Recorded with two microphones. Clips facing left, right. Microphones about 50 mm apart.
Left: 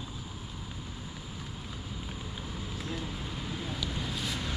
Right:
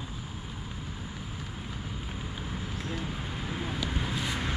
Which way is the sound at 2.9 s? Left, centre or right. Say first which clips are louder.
Right 2 dB; right.